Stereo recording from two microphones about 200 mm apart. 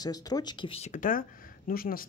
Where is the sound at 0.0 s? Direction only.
20° left (ahead or behind).